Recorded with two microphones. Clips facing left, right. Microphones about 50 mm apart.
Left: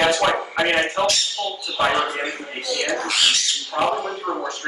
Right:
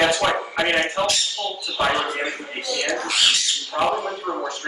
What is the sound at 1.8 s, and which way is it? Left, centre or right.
A man's voice, centre.